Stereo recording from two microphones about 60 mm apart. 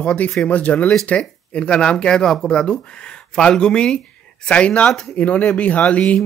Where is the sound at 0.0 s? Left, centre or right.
Left.